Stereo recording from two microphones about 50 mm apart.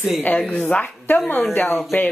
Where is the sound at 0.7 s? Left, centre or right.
Left.